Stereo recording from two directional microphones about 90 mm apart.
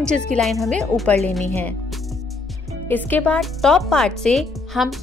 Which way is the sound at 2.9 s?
20° left (ahead or behind).